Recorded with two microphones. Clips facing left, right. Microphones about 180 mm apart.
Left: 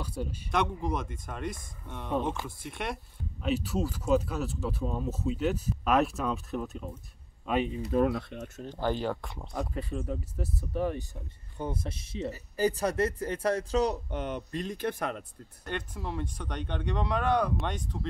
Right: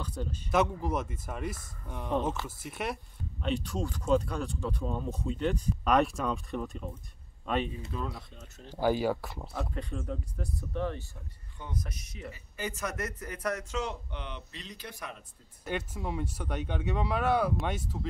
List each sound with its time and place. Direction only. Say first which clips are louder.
0.0 s a sound: left 2 dB; 10° left (ahead or behind)
0.5 s speech: right 2 dB; 5° right (ahead or behind)
7.9 s speech: left 12 dB; 65° left (ahead or behind)
8.6 s speech: right 3 dB; 10° right (ahead or behind); by 11.1 s 10° left (ahead or behind)
11.7 s speech: left 3 dB; 30° left (ahead or behind); by 15.2 s 60° left (ahead or behind)
15.6 s speech: right 1 dB; 5° right (ahead or behind)